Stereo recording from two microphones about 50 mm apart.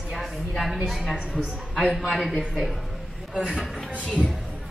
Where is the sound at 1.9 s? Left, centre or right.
Centre.